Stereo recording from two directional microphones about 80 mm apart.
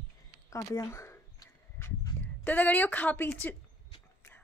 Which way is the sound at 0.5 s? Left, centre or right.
Left.